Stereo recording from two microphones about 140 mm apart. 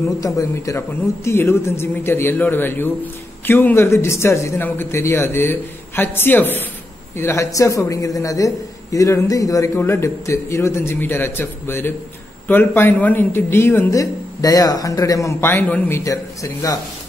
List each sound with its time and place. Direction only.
0.2 s a man's voice: 25° left (ahead or behind)